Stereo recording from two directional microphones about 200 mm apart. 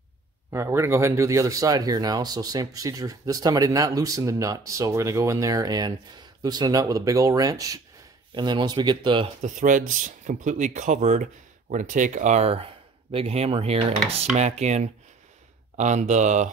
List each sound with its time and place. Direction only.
0.5 s speech: 15° right (ahead or behind)
9.4 s speech: 40° right (ahead or behind)